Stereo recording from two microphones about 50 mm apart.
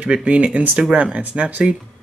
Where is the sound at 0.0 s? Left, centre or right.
Right.